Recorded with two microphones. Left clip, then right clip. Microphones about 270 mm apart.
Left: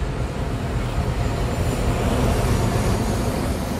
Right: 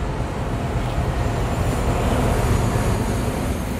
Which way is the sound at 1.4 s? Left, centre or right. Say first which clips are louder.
Right 1 dB; centre.